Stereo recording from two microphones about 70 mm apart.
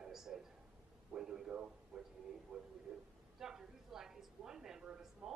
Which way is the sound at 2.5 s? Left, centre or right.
Right.